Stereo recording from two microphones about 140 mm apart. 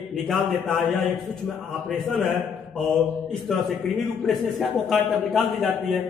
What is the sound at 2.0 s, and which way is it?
A man's voice, centre (ahead or behind).